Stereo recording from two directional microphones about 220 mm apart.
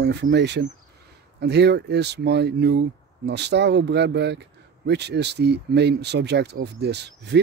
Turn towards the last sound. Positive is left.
turn(degrees=-50)  # may be behind; listen again after turning